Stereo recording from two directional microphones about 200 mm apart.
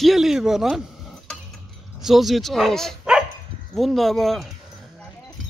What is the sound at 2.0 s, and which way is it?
Speech, centre (ahead or behind).